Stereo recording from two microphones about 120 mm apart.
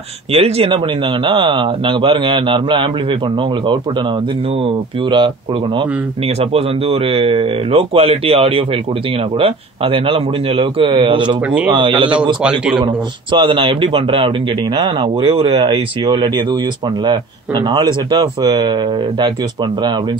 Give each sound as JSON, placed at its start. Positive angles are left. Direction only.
{"t": 0.3, "sound": "speech", "side_deg": -55}
{"t": 12.4, "sound": "a man's voice", "side_deg": -5}
{"t": 12.7, "sound": "speech", "side_deg": -40}